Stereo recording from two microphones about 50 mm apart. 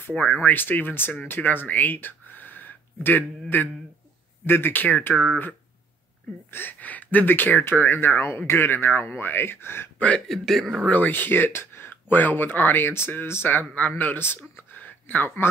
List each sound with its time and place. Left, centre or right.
0.4 s speech: left
6.5 s speech: left
9.9 s speech: left
10.2 s speech: centre
10.9 s speech: left